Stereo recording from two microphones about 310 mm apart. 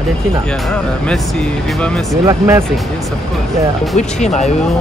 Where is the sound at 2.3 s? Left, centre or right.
Centre.